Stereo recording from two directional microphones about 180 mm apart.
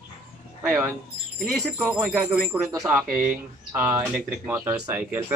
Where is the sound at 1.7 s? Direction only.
10° right (ahead or behind).